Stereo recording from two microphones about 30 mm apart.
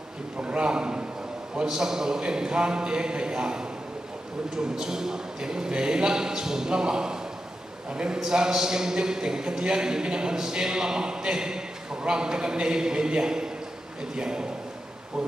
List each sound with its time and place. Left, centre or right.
0.4 s a man's voice: right
0.7 s a man's voice: right
1.6 s a man's voice: centre